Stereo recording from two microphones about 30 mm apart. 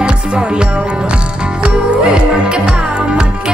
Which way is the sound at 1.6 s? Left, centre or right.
Right.